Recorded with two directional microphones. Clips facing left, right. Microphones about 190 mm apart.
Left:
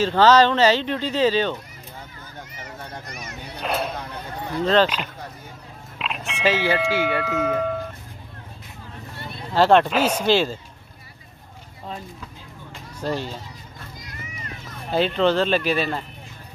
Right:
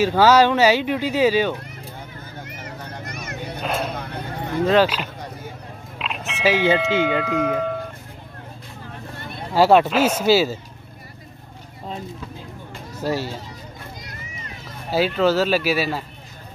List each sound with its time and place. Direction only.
0.0 s speech: 10° right (ahead or behind)
3.6 s speech: centre (ahead or behind)
5.9 s a sound: centre (ahead or behind)
6.9 s speech: 20° right (ahead or behind)
7.3 s speech: 5° left (ahead or behind)
9.5 s speech: 10° right (ahead or behind)
13.0 s speech: 5° right (ahead or behind)
14.9 s speech: 5° right (ahead or behind)